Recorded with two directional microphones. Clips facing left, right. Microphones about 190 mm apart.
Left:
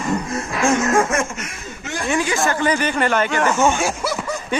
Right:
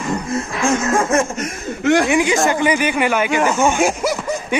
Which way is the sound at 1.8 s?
75° right (ahead or behind).